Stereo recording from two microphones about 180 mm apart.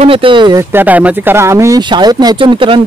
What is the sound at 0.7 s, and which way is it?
Speech, 10° right (ahead or behind).